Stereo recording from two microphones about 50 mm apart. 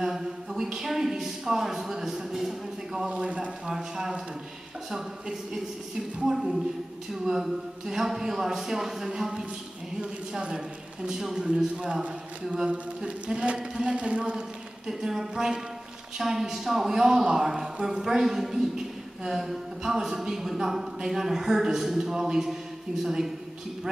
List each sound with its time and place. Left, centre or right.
0.0 s speech: centre
3.1 s speech: right
3.6 s speech: centre
6.1 s speech: centre